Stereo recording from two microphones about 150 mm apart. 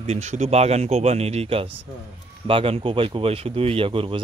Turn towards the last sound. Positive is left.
turn(degrees=-35)  # may be behind; listen again after turning